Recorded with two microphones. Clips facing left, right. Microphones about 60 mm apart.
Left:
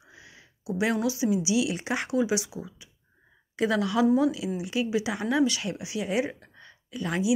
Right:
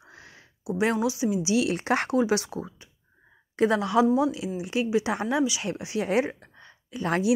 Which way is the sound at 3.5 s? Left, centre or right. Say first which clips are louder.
Right 3 dB; right.